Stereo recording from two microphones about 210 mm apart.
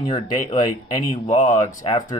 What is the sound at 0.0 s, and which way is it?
Speech, 20° left (ahead or behind).